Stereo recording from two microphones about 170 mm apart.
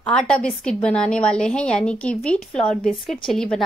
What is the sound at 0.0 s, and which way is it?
A woman's voice, 5° left (ahead or behind).